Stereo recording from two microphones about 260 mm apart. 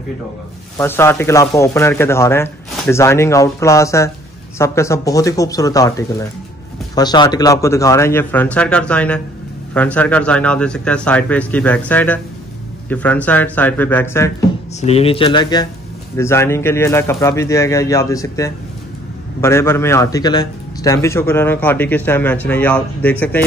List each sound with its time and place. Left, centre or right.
0.7 s a man's voice: centre
14.8 s a man's voice: left; by 23.4 s centre